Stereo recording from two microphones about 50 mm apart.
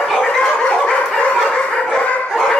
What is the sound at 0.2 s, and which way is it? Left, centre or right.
Dog, centre.